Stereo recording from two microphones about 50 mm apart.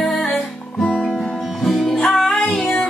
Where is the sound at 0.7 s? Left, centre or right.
Centre.